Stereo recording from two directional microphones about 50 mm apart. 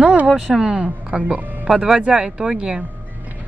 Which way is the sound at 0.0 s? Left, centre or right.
Right.